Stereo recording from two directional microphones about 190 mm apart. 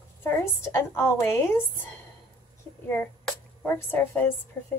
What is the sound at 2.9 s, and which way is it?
A woman's voice, 10° left (ahead or behind).